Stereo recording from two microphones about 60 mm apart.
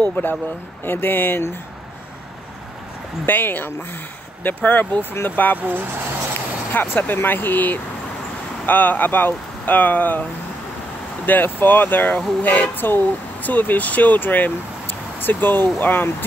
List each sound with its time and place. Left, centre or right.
0.1 s speech: left
3.3 s speech: left
5.1 s speech: left
5.6 s speech: right
6.7 s speech: left
11.2 s speech: left